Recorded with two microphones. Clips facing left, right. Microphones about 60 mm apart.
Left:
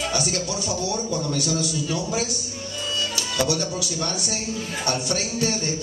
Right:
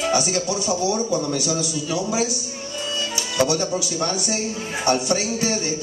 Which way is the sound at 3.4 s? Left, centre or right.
Centre.